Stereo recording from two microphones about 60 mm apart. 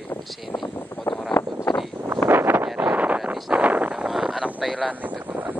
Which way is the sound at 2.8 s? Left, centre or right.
Right.